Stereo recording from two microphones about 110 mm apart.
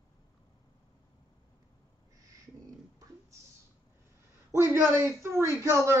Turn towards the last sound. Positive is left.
turn(degrees=-25)  # may be behind; listen again after turning